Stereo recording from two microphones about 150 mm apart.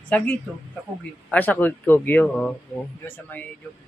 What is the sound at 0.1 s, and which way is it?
Speech, 10° left (ahead or behind).